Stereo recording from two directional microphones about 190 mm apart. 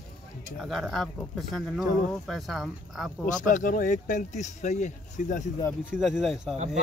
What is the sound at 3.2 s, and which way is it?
Speech, 45° left (ahead or behind).